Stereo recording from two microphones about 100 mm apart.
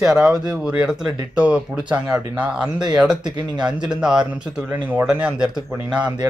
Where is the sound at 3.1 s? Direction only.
45° right (ahead or behind).